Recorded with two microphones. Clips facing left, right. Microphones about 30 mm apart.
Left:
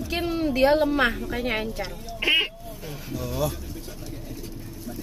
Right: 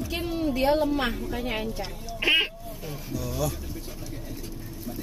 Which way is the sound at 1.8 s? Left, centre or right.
Centre.